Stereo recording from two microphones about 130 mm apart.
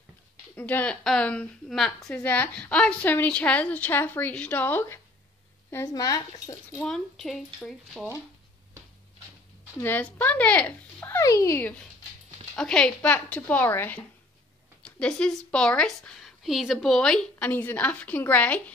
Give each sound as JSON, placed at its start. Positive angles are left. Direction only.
{"t": 0.6, "sound": "a woman's voice", "side_deg": 15}
{"t": 6.8, "sound": "speech", "side_deg": 5}
{"t": 9.8, "sound": "a woman's voice", "side_deg": 10}